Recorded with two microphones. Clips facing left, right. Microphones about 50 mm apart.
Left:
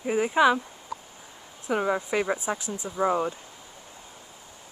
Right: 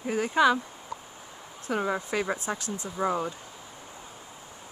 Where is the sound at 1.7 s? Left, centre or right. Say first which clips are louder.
Left 3 dB; centre.